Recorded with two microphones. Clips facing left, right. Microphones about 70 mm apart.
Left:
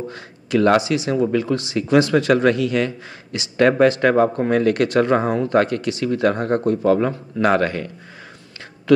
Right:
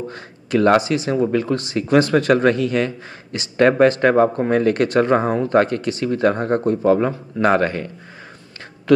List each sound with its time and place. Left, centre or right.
0.1 s speech: right
8.9 s speech: right